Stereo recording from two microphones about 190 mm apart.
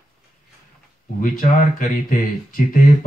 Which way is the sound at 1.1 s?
45° left (ahead or behind).